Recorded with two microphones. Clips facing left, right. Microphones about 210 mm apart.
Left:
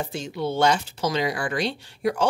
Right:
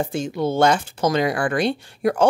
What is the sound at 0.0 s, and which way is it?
Speech, 50° right (ahead or behind).